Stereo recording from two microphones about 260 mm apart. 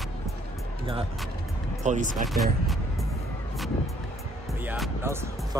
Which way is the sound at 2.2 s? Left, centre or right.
Centre.